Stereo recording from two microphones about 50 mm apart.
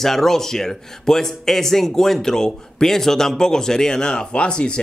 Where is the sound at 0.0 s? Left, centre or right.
Centre.